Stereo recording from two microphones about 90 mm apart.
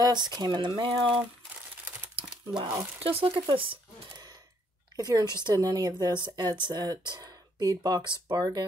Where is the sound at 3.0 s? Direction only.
90° right.